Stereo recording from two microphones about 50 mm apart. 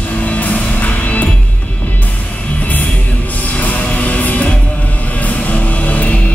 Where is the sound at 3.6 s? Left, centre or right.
Left.